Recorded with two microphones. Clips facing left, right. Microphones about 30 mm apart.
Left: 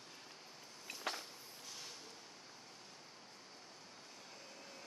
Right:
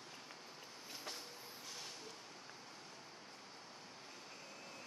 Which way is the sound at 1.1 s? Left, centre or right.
Left.